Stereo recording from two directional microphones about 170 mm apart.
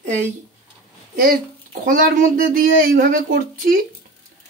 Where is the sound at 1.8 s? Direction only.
55° right (ahead or behind).